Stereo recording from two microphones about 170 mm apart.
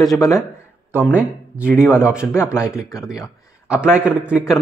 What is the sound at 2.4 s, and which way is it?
Speech, 5° right (ahead or behind).